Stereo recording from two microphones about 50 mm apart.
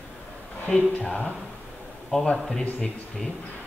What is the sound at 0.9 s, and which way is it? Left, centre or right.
Speech, left.